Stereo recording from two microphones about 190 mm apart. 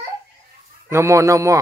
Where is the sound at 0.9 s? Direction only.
15° right (ahead or behind).